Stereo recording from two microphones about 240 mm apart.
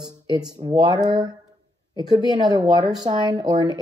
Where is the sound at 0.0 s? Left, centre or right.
Centre.